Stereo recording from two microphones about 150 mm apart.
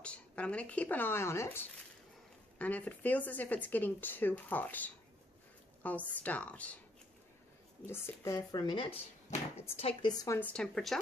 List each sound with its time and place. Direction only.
0.0 s speech: 10° left (ahead or behind)
7.8 s speech: 15° left (ahead or behind); by 10.1 s 40° left (ahead or behind)
10.2 s speech: 20° left (ahead or behind)
10.5 s speech: 5° left (ahead or behind)